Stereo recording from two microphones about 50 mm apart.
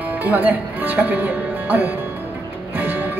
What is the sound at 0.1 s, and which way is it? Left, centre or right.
Speech, right.